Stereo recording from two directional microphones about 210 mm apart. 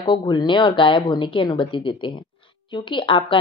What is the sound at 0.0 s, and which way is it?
Speech, 20° left (ahead or behind).